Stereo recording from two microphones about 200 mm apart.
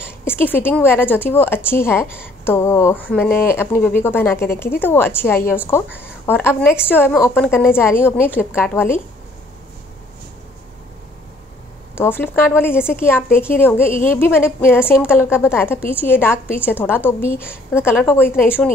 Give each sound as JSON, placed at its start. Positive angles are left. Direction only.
{"t": 0.0, "sound": "speech", "side_deg": 10}
{"t": 12.0, "sound": "speech", "side_deg": 10}